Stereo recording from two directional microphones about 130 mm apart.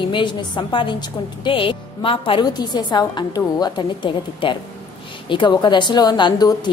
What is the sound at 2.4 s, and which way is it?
A woman's voice, 30° left (ahead or behind).